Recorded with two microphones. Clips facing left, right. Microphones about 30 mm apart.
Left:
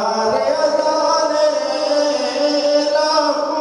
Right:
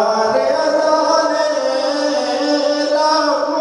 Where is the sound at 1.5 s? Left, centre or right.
Right.